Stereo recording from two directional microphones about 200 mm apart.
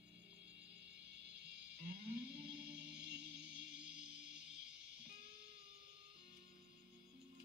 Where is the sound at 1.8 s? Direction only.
50° right (ahead or behind).